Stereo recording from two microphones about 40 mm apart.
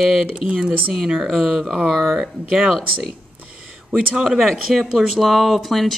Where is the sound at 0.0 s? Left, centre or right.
Centre.